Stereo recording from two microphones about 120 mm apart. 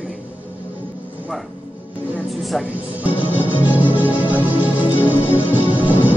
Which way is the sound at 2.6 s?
15° right (ahead or behind).